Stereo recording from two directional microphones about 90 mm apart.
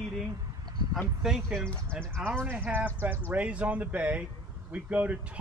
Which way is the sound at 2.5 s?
20° right (ahead or behind).